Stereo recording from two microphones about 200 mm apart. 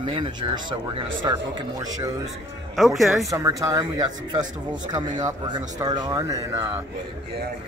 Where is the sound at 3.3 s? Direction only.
15° right (ahead or behind).